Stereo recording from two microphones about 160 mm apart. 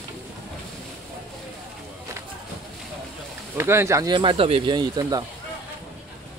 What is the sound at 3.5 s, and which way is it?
Speech, 15° right (ahead or behind).